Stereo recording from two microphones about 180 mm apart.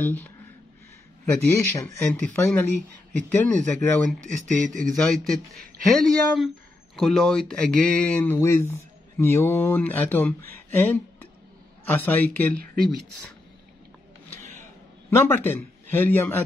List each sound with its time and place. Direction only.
0.0 s speech: 10° left (ahead or behind)
4.2 s speech: 45° right (ahead or behind)
4.9 s speech: centre (ahead or behind)
15.0 s a man's voice: 15° left (ahead or behind)